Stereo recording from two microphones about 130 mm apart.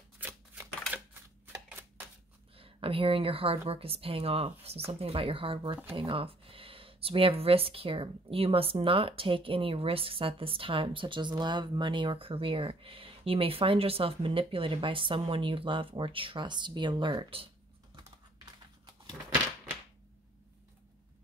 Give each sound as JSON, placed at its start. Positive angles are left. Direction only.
{"t": 0.2, "sound": "scissors", "side_deg": -15}
{"t": 1.5, "sound": "a sound", "side_deg": -15}
{"t": 2.5, "sound": "speech", "side_deg": -45}
{"t": 18.4, "sound": "typing", "side_deg": -35}